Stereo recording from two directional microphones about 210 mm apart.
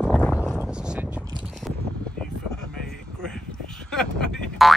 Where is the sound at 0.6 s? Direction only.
5° right (ahead or behind).